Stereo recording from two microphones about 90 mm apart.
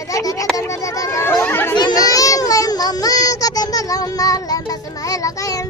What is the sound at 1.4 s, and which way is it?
Speech, 25° left (ahead or behind).